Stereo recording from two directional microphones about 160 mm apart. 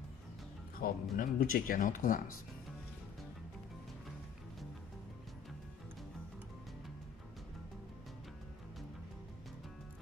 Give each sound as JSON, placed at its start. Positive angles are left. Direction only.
{"t": 0.8, "sound": "speech", "side_deg": 60}